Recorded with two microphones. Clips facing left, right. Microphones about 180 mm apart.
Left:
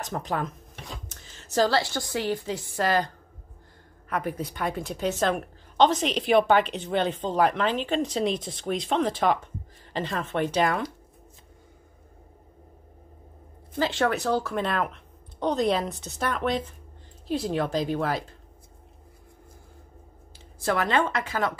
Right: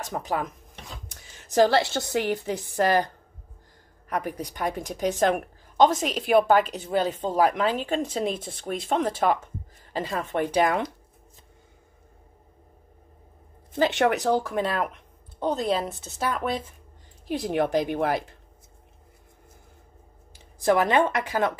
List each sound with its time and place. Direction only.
0.0 s a woman's voice: 10° right (ahead or behind)
4.2 s a woman's voice: 15° right (ahead or behind)
13.7 s a woman's voice: 20° right (ahead or behind)
17.3 s a woman's voice: 15° right (ahead or behind)
20.3 s speech: 15° right (ahead or behind)